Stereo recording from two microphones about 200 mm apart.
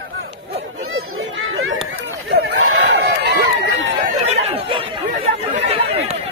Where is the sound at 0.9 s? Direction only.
90° right.